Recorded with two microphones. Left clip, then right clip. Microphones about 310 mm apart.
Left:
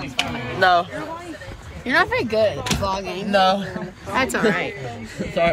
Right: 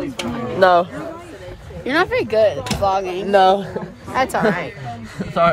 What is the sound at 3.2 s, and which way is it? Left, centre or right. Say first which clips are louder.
Speech: right 4 dB; right.